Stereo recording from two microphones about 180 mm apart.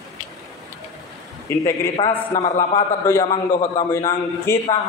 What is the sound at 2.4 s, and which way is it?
A man's voice, 20° left (ahead or behind).